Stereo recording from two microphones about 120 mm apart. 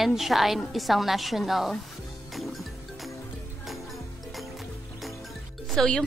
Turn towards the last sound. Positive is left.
turn(degrees=5)  # may be behind; listen again after turning